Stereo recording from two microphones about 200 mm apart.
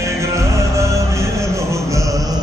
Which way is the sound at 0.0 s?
15° right (ahead or behind).